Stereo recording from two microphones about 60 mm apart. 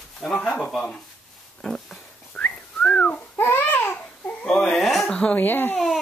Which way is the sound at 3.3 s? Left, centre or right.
Left.